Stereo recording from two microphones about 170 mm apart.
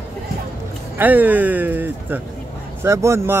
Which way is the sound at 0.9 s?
10° right (ahead or behind).